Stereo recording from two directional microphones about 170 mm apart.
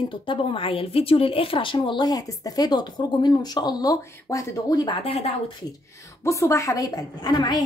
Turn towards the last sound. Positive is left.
turn(degrees=25)  # may be behind; listen again after turning